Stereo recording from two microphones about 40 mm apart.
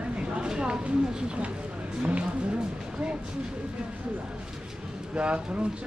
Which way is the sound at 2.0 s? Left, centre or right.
Right.